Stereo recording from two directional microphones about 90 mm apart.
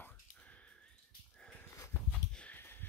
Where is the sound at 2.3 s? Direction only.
15° left (ahead or behind).